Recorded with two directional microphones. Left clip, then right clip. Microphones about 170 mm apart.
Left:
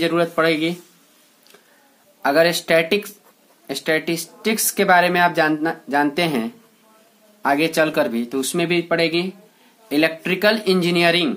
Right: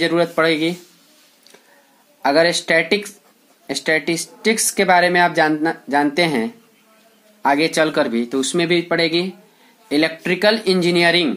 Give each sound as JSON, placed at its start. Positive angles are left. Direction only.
{"t": 0.0, "sound": "speech", "side_deg": -20}
{"t": 2.2, "sound": "a woman's voice", "side_deg": -20}